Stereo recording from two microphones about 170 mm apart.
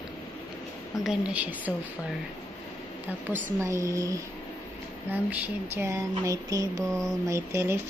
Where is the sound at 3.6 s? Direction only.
20° right (ahead or behind).